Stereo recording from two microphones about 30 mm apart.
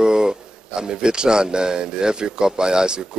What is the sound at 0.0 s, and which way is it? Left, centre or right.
Speech, right.